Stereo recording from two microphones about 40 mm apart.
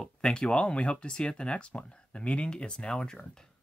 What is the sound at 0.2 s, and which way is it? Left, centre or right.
Speech, left.